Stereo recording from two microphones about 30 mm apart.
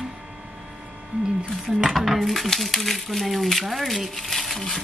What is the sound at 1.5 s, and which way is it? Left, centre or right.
Dishes, centre.